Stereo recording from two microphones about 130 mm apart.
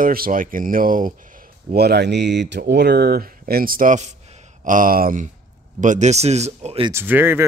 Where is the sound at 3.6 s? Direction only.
90° right.